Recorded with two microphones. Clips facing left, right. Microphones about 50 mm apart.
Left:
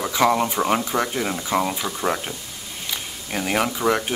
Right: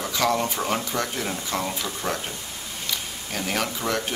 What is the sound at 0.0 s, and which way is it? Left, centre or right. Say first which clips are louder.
Speech: left 4 dB; centre.